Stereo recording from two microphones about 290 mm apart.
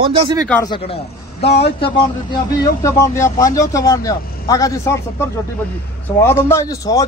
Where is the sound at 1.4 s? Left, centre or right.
Left.